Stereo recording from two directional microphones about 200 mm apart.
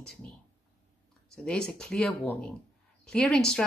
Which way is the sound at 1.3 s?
5° left (ahead or behind).